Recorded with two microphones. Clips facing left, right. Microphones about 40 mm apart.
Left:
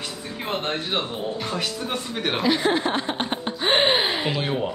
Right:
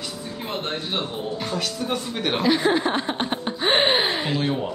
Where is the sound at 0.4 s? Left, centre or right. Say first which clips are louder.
Left 2 dB; left.